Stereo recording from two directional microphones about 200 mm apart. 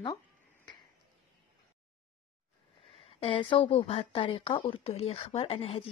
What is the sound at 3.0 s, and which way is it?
Speech, 25° left (ahead or behind).